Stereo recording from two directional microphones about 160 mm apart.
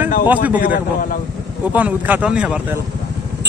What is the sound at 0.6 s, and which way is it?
Speech, 60° left (ahead or behind).